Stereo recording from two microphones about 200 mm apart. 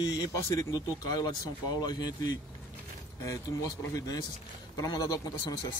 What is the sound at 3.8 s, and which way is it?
Speech, 15° left (ahead or behind).